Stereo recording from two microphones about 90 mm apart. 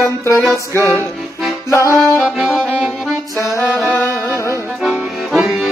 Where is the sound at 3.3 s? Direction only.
35° left (ahead or behind).